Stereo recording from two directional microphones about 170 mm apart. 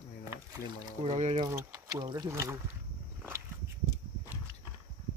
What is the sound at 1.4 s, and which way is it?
Speech, 20° right (ahead or behind).